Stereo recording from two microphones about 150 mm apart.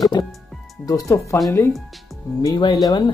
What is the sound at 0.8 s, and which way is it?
Speech, 20° left (ahead or behind).